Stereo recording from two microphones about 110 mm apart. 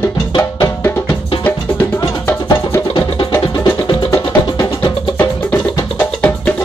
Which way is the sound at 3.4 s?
50° left (ahead or behind).